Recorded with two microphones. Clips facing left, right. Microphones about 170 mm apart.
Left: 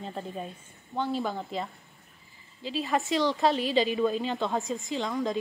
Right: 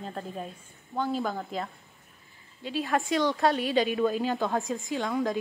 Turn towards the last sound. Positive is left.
turn(degrees=0)  # may be behind; listen again after turning